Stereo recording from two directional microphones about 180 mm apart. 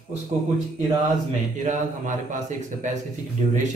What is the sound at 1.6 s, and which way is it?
Speech, 45° right (ahead or behind).